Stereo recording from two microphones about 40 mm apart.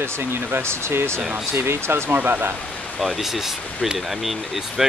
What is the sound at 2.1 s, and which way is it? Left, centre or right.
Speech, right.